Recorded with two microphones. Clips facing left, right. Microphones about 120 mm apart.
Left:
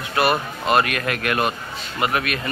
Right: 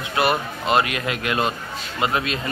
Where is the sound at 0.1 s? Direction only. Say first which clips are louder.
Left 1 dB; 20° right (ahead or behind).